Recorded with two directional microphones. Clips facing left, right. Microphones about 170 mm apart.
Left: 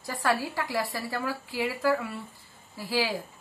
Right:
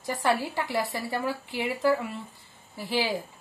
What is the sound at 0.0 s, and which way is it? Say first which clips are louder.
A woman's voice: right 2 dB; 20° right (ahead or behind).